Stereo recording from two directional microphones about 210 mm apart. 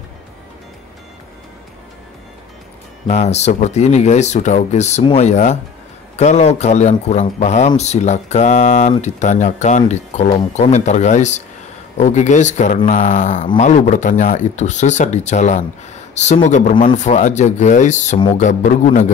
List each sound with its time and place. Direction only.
3.1 s a man's voice: 30° left (ahead or behind)